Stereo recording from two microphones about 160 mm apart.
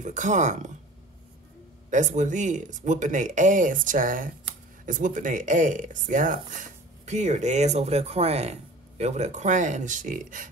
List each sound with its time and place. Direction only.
0.0 s speech: 50° right (ahead or behind)
1.9 s speech: 50° right (ahead or behind)